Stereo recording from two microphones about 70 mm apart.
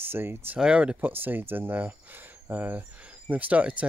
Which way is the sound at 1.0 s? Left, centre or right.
Right.